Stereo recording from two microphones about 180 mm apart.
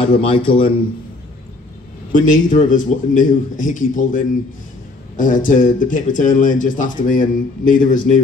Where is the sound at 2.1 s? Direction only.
45° left (ahead or behind).